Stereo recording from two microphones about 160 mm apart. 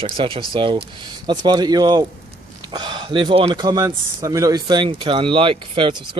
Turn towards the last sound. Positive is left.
turn(degrees=-30)  # may be behind; listen again after turning